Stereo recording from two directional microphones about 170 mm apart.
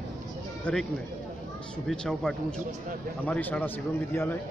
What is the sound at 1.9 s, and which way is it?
A man's voice, 5° left (ahead or behind).